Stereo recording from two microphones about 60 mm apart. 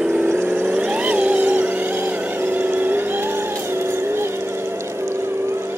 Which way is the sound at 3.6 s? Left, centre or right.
Right.